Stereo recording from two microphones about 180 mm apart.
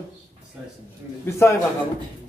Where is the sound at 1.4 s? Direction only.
15° left (ahead or behind).